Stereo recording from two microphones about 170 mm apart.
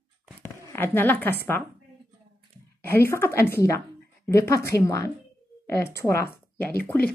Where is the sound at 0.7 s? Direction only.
10° left (ahead or behind).